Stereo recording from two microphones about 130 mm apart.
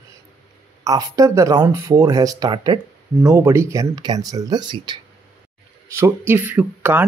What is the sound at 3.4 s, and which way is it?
Speech, 20° right (ahead or behind).